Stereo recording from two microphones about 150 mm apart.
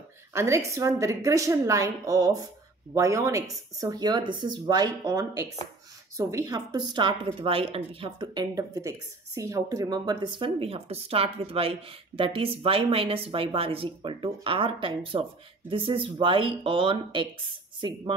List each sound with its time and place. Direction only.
0.3 s speech: 20° right (ahead or behind)